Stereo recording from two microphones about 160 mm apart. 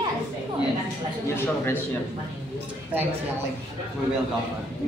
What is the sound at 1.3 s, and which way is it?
Speech, 15° left (ahead or behind).